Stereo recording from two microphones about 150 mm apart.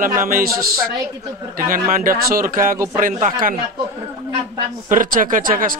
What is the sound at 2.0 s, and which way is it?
Speech, 70° right (ahead or behind).